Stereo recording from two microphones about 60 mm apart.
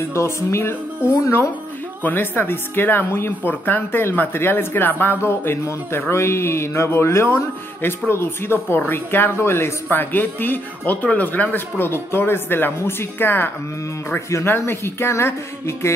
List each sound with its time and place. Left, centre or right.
0.1 s speech: left
2.0 s speech: left
11.8 s speech: left